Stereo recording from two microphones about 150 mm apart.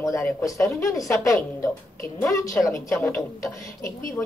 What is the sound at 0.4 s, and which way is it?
Speech, 20° left (ahead or behind).